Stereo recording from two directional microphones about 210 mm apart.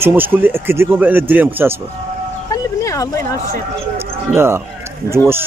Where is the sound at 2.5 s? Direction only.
15° left (ahead or behind).